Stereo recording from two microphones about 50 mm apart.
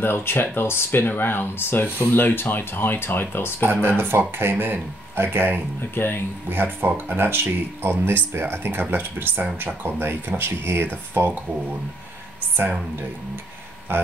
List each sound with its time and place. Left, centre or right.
0.0 s speech: left
4.0 s speech: right
5.9 s speech: left
6.5 s speech: right
13.9 s speech: right